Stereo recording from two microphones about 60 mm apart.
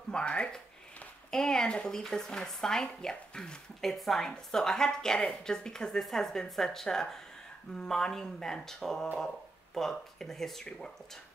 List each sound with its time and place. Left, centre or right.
0.1 s a woman's voice: centre